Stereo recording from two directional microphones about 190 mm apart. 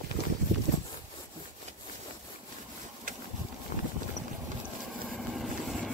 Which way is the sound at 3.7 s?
50° left (ahead or behind).